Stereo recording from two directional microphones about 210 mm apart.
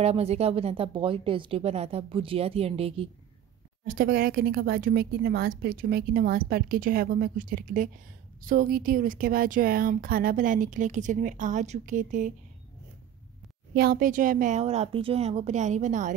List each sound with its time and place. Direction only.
0.0 s speech: 30° right (ahead or behind)
3.8 s a woman's voice: 45° right (ahead or behind)
13.7 s speech: 45° right (ahead or behind)